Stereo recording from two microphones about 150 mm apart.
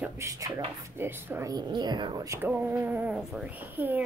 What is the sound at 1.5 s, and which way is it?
Speech, 30° right (ahead or behind).